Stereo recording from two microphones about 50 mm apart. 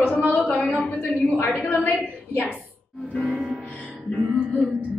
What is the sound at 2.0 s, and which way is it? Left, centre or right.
Speech, left.